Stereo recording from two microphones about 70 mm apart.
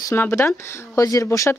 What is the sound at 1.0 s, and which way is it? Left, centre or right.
Speech, left.